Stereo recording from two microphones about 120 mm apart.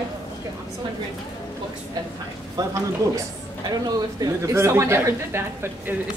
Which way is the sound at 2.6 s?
30° right (ahead or behind).